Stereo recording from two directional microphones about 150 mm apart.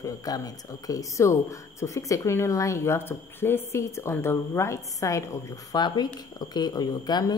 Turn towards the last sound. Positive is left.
turn(degrees=25)  # may be behind; listen again after turning